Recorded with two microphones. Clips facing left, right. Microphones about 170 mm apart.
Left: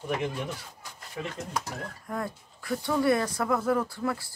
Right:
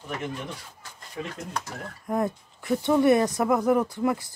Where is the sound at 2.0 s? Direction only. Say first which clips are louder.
Right 9 dB; 20° right (ahead or behind).